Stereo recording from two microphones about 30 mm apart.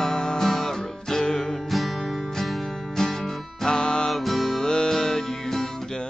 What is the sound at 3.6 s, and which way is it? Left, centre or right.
Music, left.